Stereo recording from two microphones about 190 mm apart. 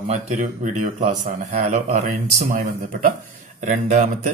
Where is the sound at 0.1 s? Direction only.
40° right (ahead or behind).